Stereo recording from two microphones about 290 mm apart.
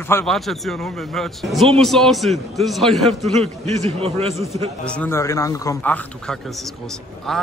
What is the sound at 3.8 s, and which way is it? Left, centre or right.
Speech, right.